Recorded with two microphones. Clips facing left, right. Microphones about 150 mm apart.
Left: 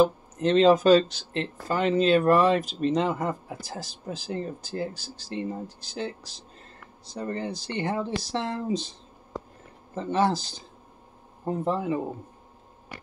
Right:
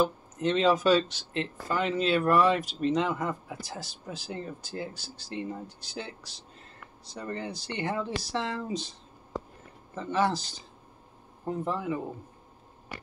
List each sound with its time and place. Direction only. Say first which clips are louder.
0.0 s speech: left 5 dB; 35° left (ahead or behind)
7.2 s speech: left 4 dB; 30° left (ahead or behind)
9.9 s speech: left 3 dB; 25° left (ahead or behind)
11.4 s speech: left 4 dB; 30° left (ahead or behind)